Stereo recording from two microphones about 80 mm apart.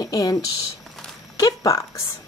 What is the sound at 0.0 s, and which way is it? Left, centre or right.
Speech, left.